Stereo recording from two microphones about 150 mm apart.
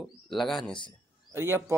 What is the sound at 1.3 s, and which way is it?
Speech, 15° right (ahead or behind).